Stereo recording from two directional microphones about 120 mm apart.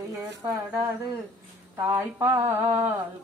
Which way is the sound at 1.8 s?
20° right (ahead or behind).